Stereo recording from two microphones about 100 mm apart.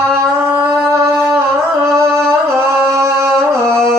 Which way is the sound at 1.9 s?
30° right (ahead or behind).